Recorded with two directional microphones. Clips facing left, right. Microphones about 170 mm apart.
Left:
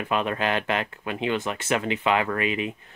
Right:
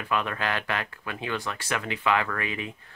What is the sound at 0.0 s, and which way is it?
Speech, 20° left (ahead or behind).